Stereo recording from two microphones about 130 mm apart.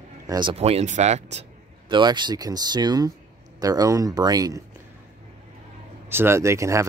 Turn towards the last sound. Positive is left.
turn(degrees=-25)  # may be behind; listen again after turning